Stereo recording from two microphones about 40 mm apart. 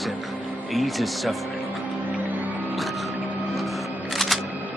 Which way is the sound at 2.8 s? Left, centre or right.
Centre.